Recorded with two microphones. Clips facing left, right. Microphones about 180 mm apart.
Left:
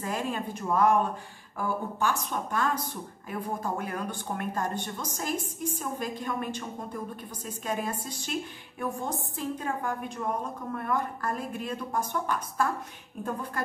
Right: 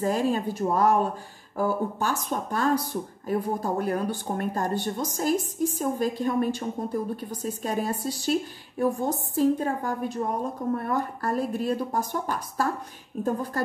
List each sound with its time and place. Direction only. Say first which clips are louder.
0.0 s speech: right 7 dB; 35° right (ahead or behind)